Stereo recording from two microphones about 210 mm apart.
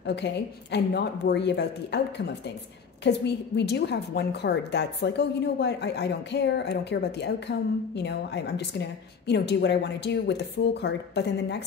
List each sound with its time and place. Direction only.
0.0 s a woman's voice: 55° left (ahead or behind)